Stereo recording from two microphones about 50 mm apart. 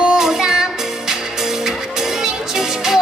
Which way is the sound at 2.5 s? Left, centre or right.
Centre.